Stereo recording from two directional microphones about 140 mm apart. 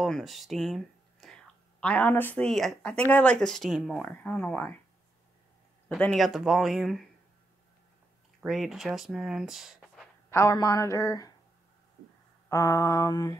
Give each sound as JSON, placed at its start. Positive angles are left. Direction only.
{"t": 0.0, "sound": "speech", "side_deg": 0}
{"t": 2.4, "sound": "speech", "side_deg": 0}
{"t": 5.9, "sound": "speech", "side_deg": 5}
{"t": 8.4, "sound": "speech", "side_deg": -5}
{"t": 10.3, "sound": "speech", "side_deg": 25}
{"t": 12.4, "sound": "speech", "side_deg": 20}